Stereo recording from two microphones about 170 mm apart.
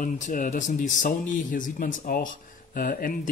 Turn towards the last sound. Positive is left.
turn(degrees=60)  # may be behind; listen again after turning